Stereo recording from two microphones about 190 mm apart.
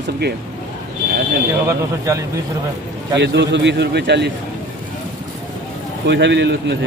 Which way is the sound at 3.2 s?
65° right (ahead or behind).